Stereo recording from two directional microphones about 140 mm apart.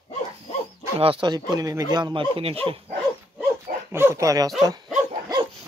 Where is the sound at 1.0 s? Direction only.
35° right (ahead or behind).